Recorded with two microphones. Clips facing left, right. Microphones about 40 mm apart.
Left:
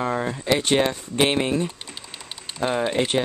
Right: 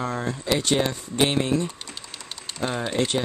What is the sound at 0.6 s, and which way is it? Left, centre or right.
Speech, left.